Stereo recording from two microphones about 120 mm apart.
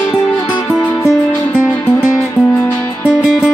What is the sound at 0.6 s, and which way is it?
Music, 10° left (ahead or behind).